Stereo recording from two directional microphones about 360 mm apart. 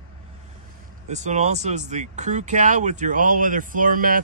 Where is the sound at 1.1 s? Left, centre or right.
Centre.